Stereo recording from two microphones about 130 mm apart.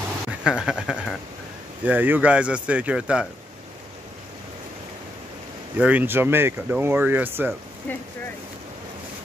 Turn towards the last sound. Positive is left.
turn(degrees=-15)  # may be behind; listen again after turning